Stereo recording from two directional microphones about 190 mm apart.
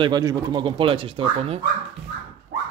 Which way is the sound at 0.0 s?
20° right (ahead or behind).